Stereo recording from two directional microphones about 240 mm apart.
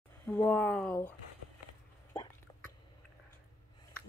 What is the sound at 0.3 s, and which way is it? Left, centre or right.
Speech, centre.